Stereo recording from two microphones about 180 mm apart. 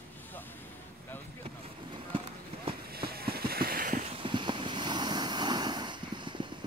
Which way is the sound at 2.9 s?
60° right (ahead or behind).